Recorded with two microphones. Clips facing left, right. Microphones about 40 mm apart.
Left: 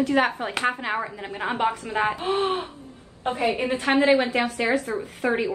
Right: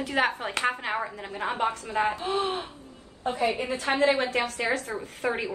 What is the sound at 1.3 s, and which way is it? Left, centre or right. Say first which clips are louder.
A woman's voice: left 3 dB; left.